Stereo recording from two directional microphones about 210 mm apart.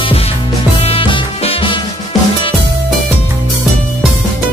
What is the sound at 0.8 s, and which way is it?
Music, 25° left (ahead or behind).